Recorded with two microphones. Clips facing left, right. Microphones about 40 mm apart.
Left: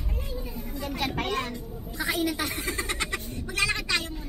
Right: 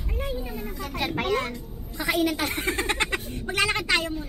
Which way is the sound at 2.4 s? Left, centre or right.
Right.